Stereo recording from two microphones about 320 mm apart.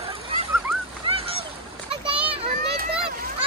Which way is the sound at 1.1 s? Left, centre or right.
Centre.